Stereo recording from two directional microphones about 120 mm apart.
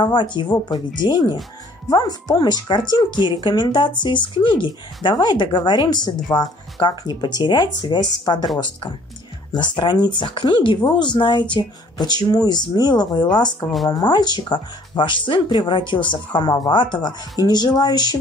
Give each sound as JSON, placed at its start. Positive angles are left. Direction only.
{"t": 0.0, "sound": "speech", "side_deg": 40}
{"t": 9.5, "sound": "speech", "side_deg": 40}